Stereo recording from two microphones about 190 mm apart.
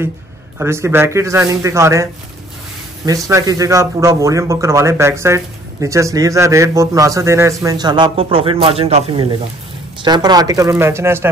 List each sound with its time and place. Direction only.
0.6 s a man's voice: 15° right (ahead or behind)
3.1 s a man's voice: 15° right (ahead or behind)